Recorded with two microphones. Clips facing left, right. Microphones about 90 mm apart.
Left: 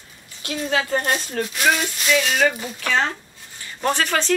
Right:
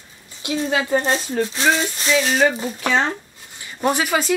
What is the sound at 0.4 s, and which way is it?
Speech, 15° right (ahead or behind).